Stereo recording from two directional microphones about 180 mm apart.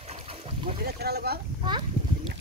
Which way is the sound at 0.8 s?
65° right (ahead or behind).